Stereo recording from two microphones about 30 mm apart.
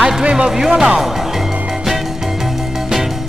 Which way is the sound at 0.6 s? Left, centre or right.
Centre.